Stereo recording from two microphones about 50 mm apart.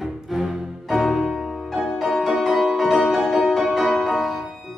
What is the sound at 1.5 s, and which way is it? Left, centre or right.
Music, centre.